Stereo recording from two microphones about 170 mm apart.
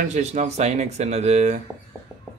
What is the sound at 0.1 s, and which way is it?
Speech, 40° right (ahead or behind).